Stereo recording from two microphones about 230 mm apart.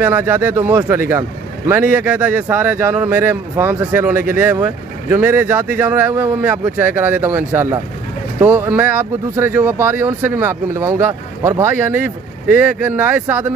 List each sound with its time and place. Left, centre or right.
0.0 s speech: centre